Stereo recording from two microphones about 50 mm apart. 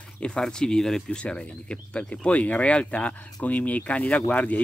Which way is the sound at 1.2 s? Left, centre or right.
Left.